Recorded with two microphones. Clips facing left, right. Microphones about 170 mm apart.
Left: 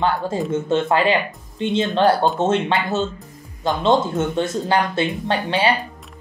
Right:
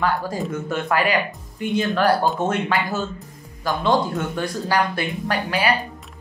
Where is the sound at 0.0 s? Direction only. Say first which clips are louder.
Left 2 dB; 25° left (ahead or behind).